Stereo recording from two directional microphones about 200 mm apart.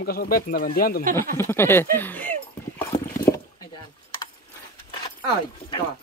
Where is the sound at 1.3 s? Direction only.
10° left (ahead or behind).